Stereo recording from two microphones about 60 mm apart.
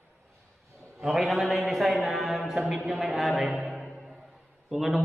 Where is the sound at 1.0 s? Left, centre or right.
Centre.